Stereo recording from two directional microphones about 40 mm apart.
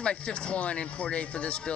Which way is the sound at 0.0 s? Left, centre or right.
Left.